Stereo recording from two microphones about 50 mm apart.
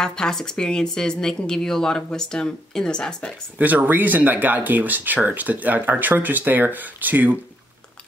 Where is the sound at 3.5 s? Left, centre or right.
Right.